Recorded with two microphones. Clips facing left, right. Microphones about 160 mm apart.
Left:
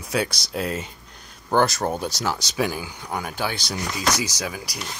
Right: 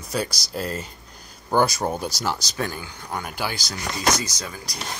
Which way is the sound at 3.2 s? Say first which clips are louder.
Left 2 dB; 5° right (ahead or behind).